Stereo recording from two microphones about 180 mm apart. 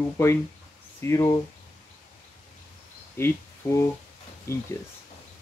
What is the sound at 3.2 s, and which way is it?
Speech, 15° left (ahead or behind).